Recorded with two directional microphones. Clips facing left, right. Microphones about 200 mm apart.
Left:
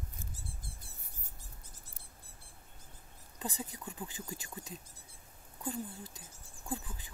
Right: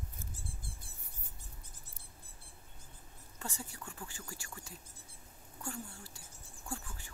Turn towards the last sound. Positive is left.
turn(degrees=15)  # may be behind; listen again after turning